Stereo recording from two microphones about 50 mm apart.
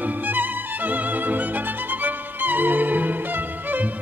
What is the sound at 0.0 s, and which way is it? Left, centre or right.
Music, right.